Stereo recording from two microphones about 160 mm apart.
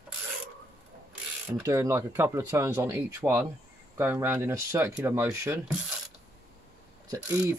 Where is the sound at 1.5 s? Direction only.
20° right (ahead or behind).